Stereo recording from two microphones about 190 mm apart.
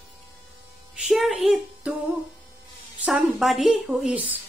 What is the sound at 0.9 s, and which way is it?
Speech, centre (ahead or behind).